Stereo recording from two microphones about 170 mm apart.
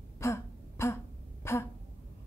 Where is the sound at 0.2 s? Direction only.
15° left (ahead or behind).